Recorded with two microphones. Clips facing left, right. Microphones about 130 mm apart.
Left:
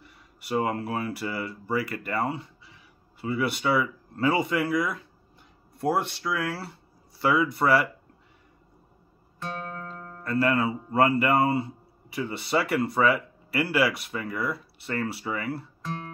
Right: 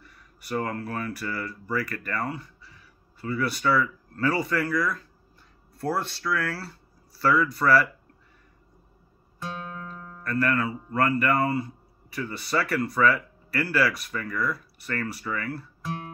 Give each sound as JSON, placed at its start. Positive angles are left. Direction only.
{"t": 0.0, "sound": "speech", "side_deg": 25}
{"t": 9.4, "sound": "music", "side_deg": 0}
{"t": 10.2, "sound": "speech", "side_deg": 20}